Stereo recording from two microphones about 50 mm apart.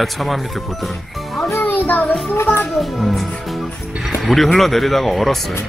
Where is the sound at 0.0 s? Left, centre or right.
Centre.